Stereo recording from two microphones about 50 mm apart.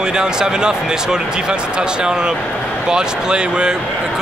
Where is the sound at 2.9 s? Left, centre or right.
Centre.